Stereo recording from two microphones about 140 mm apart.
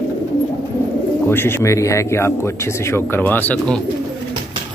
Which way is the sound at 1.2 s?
15° left (ahead or behind).